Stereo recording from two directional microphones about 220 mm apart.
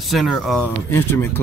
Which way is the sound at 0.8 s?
10° left (ahead or behind).